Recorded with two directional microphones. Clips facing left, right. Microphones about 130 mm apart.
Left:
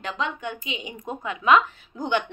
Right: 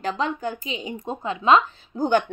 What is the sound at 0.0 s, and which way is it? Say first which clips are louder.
A woman's voice: right 4 dB; 35° right (ahead or behind).